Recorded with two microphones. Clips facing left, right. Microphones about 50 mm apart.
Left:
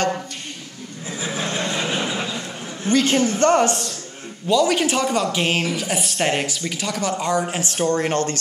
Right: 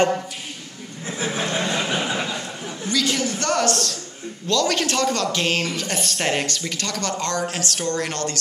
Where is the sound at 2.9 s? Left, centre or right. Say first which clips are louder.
Left 5 dB; left.